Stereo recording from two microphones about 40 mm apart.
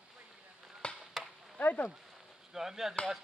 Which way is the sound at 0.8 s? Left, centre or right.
Left.